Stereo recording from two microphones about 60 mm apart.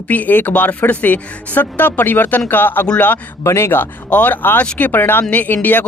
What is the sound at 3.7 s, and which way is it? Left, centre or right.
Speech, left.